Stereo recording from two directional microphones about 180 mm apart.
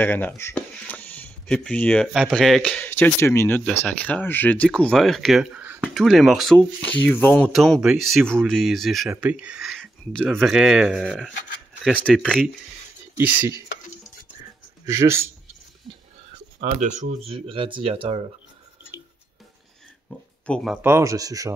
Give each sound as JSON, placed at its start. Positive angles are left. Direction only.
{"t": 0.0, "sound": "speech", "side_deg": 10}
{"t": 14.9, "sound": "speech", "side_deg": -15}
{"t": 16.5, "sound": "speech", "side_deg": -40}
{"t": 17.3, "sound": "speech", "side_deg": -30}
{"t": 20.1, "sound": "oink", "side_deg": 5}
{"t": 20.8, "sound": "speech", "side_deg": -15}